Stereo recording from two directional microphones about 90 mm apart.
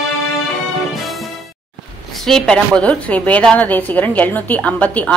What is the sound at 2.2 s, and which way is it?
A woman's voice, 5° left (ahead or behind).